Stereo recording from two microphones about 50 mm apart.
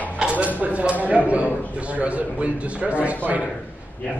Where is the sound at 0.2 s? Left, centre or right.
Right.